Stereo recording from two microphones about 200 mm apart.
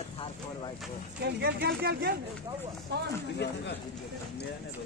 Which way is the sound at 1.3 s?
55° right (ahead or behind).